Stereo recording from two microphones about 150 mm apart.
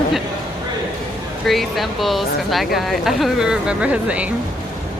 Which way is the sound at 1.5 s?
Centre (ahead or behind).